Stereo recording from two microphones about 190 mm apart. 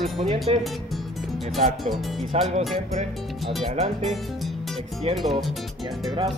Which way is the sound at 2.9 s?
35° right (ahead or behind).